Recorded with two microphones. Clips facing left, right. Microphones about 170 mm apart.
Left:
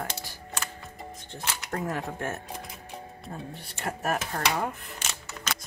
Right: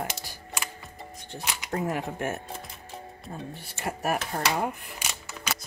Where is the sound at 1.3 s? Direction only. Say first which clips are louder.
Right 2 dB; 15° right (ahead or behind).